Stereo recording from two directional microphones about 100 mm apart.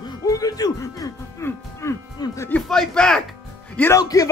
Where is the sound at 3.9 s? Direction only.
35° left (ahead or behind).